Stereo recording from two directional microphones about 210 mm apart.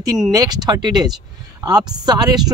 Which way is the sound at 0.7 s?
20° right (ahead or behind).